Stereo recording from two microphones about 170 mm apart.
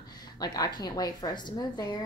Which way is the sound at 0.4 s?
25° left (ahead or behind).